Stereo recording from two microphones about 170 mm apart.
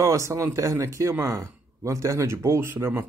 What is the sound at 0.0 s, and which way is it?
A man's voice, 15° right (ahead or behind).